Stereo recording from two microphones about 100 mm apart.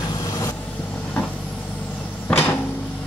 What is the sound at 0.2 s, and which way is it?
Vehicle, 35° left (ahead or behind).